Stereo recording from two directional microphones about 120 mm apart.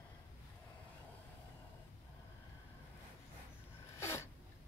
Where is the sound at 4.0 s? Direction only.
20° left (ahead or behind).